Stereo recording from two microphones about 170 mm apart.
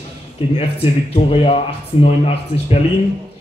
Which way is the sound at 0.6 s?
35° left (ahead or behind).